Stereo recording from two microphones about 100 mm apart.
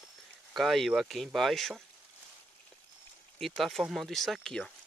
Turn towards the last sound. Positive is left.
turn(degrees=5)  # may be behind; listen again after turning